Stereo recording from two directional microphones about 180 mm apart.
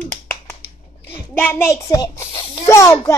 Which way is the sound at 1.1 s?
10° left (ahead or behind).